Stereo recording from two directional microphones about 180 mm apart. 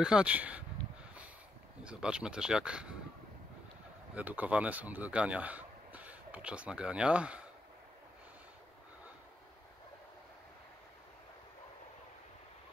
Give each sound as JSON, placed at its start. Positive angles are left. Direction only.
{"t": 0.0, "sound": "speech", "side_deg": -5}
{"t": 1.9, "sound": "speech", "side_deg": -5}
{"t": 4.1, "sound": "speech", "side_deg": -10}